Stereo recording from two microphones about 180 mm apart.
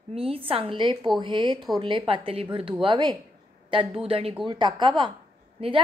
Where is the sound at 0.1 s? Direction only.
30° right (ahead or behind).